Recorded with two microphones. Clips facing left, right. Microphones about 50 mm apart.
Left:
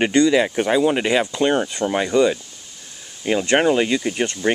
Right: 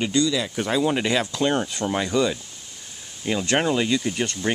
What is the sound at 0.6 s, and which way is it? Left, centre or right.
Speech, centre.